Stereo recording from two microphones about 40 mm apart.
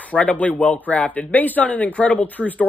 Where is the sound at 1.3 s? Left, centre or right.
Left.